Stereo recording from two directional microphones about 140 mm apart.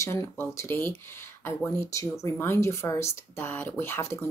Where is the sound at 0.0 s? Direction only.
20° left (ahead or behind).